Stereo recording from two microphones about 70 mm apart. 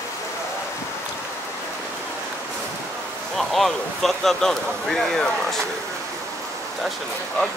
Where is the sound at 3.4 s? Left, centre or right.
Centre.